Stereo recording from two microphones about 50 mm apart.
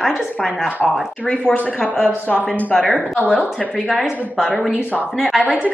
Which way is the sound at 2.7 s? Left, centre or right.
Centre.